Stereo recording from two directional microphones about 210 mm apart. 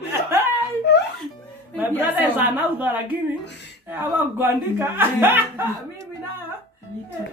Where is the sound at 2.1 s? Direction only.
10° right (ahead or behind).